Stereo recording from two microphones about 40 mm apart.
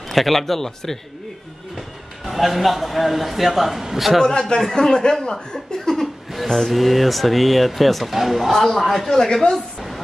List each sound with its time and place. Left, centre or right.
0.1 s speech: centre
1.8 s a man's voice: centre
4.2 s speech: centre
6.3 s speech: centre